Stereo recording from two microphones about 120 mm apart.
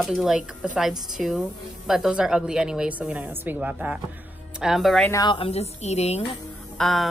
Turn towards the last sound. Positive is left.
turn(degrees=5)  # may be behind; listen again after turning